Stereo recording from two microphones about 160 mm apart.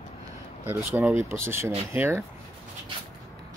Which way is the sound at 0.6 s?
15° right (ahead or behind).